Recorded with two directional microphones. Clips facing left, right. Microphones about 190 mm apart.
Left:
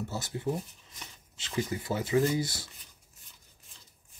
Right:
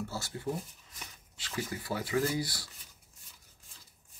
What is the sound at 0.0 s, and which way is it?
Speech, 20° left (ahead or behind).